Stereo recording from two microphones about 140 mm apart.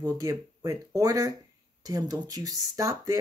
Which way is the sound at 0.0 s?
25° right (ahead or behind).